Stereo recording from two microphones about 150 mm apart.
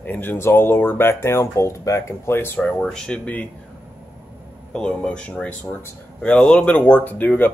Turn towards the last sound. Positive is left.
turn(degrees=10)  # may be behind; listen again after turning